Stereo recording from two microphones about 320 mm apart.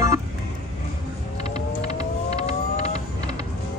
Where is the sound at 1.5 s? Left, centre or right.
Centre.